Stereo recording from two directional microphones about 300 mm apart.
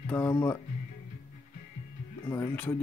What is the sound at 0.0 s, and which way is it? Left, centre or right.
Speech, centre.